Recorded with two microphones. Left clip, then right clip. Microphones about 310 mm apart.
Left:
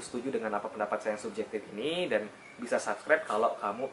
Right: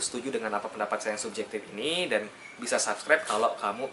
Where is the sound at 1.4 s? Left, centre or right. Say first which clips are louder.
Right 1 dB; centre.